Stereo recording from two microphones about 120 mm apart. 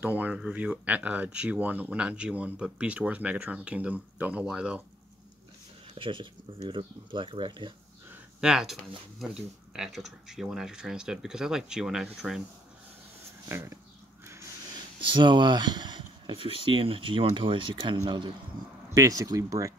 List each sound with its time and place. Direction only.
0.0 s speech: 15° right (ahead or behind)
5.9 s speech: 45° right (ahead or behind)
8.1 s a sound: 5° right (ahead or behind)
9.2 s speech: 5° right (ahead or behind)
13.5 s speech: 20° right (ahead or behind)
15.0 s speech: 40° right (ahead or behind)
16.3 s speech: 50° right (ahead or behind)
18.9 s speech: 30° right (ahead or behind)